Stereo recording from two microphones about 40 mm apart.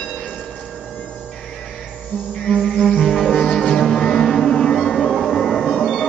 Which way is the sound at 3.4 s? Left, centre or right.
Centre.